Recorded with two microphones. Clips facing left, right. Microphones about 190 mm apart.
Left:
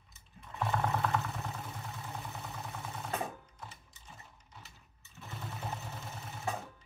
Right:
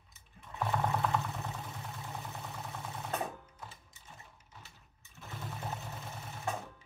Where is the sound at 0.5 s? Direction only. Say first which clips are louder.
Even; centre (ahead or behind).